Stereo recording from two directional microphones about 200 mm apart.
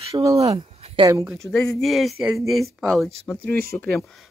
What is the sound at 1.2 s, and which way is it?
Speech, centre (ahead or behind).